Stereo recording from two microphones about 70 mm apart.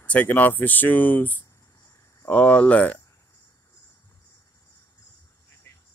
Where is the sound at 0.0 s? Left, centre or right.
Left.